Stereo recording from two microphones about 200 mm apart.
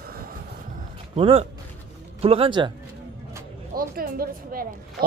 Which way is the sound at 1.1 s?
30° right (ahead or behind).